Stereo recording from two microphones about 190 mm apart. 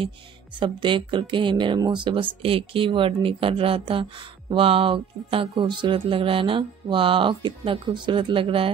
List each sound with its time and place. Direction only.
0.6 s speech: 25° right (ahead or behind)